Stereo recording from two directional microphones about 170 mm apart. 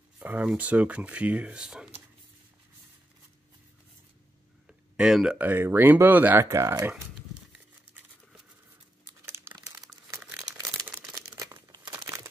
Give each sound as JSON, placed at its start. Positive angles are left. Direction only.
{"t": 0.2, "sound": "speech", "side_deg": -10}
{"t": 4.9, "sound": "speech", "side_deg": -5}
{"t": 9.2, "sound": "crumpling", "side_deg": -15}